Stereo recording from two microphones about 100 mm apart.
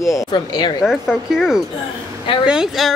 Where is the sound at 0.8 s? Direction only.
5° right (ahead or behind).